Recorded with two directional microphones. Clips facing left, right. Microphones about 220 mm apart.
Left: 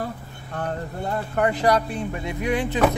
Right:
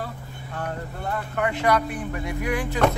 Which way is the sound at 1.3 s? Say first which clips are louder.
Left 2 dB; 35° left (ahead or behind).